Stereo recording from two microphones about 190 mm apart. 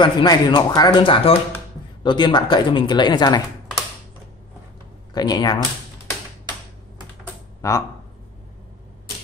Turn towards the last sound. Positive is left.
turn(degrees=15)  # may be behind; listen again after turning